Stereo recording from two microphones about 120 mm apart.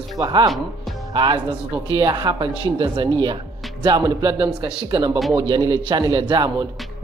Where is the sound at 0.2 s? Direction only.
35° right (ahead or behind).